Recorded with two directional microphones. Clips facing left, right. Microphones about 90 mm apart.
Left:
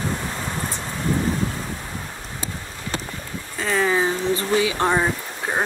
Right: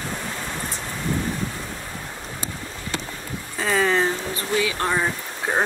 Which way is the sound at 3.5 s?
Centre (ahead or behind).